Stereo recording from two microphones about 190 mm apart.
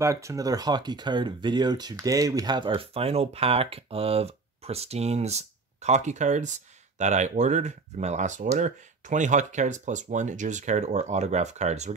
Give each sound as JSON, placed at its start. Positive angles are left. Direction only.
{"t": 0.0, "sound": "speech", "side_deg": -15}